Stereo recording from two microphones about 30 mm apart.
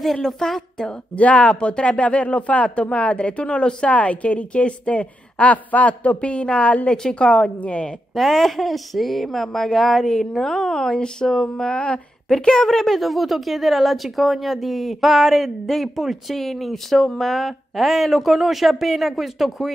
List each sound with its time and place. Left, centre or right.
0.0 s a woman's voice: centre
1.1 s speech: left
8.1 s a woman's voice: centre
13.0 s speech: centre
15.0 s speech: centre